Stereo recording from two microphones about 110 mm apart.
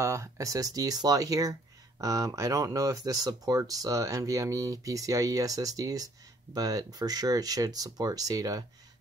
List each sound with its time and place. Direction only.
0.0 s speech: 25° right (ahead or behind)